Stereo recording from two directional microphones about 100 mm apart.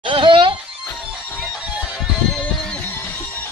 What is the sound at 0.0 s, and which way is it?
Music, 55° right (ahead or behind).